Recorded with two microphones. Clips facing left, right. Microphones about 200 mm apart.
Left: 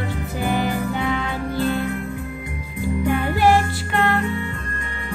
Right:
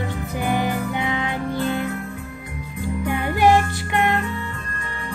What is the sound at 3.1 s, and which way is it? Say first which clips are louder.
Music: even; 20° right (ahead or behind).